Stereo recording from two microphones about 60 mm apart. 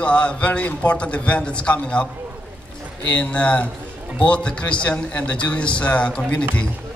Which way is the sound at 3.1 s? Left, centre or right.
Left.